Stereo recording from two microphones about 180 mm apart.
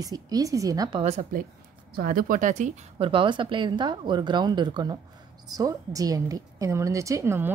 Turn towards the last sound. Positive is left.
turn(degrees=-15)  # may be behind; listen again after turning